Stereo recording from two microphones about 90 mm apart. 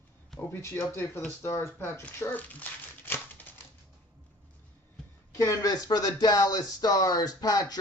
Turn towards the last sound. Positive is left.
turn(degrees=45)  # may be behind; listen again after turning